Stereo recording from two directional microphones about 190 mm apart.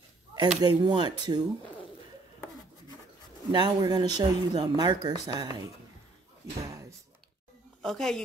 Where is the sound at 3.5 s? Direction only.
25° right (ahead or behind).